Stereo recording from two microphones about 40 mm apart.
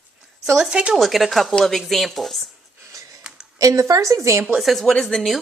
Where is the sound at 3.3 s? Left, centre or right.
Right.